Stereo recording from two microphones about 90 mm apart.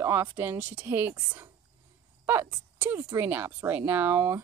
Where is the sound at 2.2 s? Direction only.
30° right (ahead or behind).